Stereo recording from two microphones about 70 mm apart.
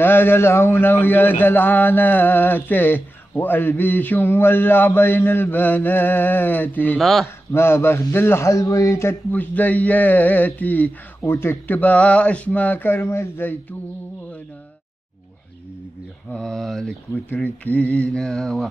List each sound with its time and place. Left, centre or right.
0.0 s mantra: left
7.0 s mantra: centre
7.5 s a man's voice: left
9.3 s mantra: left
11.1 s mantra: left
16.3 s mantra: centre
17.1 s mantra: left
18.2 s mantra: centre